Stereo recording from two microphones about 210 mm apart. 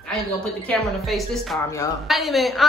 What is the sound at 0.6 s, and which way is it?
A woman's voice, centre (ahead or behind).